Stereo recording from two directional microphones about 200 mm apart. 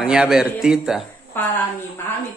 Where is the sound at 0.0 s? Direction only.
5° right (ahead or behind).